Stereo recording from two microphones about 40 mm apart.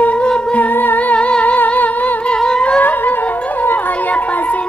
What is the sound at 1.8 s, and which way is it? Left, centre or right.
Humming, left.